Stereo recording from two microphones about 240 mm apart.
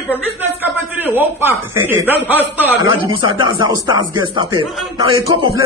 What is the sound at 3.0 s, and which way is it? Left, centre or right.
A man's voice, right.